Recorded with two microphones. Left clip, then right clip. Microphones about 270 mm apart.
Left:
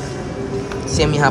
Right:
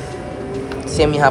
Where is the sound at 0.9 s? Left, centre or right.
Centre.